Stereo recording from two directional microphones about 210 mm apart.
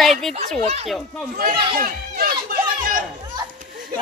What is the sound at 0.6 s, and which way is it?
Speech, 30° right (ahead or behind).